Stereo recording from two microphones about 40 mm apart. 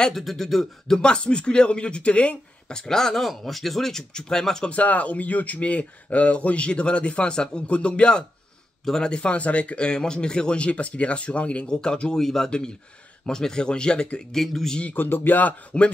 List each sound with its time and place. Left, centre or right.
0.1 s speech: centre; by 2.3 s left
2.7 s speech: centre
3.0 s speech: centre
4.1 s speech: centre
4.6 s speech: left
8.9 s speech: centre
9.2 s speech: left
9.8 s speech: centre
11.7 s speech: centre
14.3 s speech: centre
15.0 s speech: left
15.7 s speech: left